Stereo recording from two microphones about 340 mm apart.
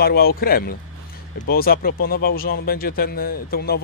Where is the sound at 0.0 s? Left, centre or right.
Left.